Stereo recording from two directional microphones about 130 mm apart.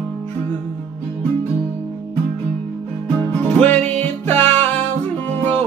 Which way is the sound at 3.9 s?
15° left (ahead or behind).